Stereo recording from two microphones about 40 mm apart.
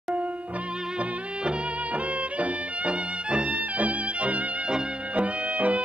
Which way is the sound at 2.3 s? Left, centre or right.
Right.